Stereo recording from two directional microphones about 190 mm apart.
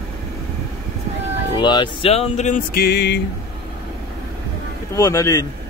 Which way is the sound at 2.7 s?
60° left (ahead or behind).